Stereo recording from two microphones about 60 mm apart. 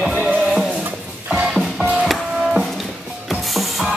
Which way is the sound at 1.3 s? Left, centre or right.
Centre.